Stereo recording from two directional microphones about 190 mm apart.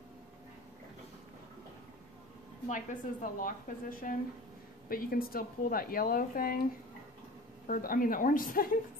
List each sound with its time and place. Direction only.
2.7 s speech: 45° left (ahead or behind)
7.6 s speech: 45° left (ahead or behind)